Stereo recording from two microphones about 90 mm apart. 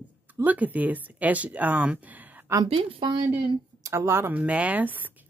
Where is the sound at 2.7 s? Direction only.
80° right.